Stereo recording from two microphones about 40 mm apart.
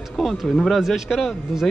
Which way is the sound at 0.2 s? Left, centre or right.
Centre.